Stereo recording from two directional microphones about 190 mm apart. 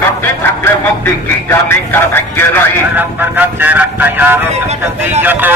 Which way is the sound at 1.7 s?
10° left (ahead or behind).